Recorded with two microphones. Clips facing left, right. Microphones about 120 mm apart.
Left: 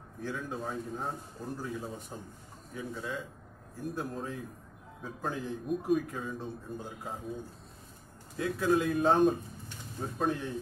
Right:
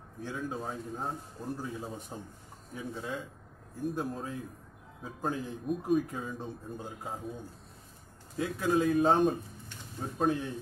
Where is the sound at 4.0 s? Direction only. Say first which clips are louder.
Right 1 dB; centre (ahead or behind).